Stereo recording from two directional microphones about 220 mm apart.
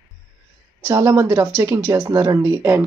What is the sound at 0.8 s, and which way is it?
Speech, 15° right (ahead or behind).